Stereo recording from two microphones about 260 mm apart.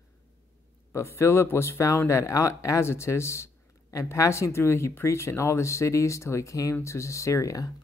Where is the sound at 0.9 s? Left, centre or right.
Centre.